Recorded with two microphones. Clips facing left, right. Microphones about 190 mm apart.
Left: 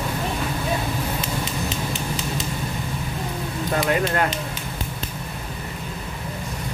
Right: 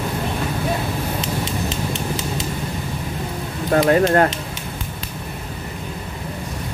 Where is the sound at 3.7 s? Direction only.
40° right (ahead or behind).